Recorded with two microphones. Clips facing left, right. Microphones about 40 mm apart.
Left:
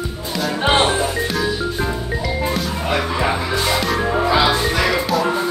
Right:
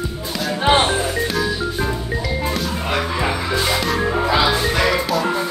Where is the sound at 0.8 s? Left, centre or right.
Left.